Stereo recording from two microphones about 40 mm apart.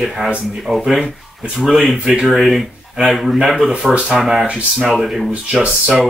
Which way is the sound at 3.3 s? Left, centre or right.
Centre.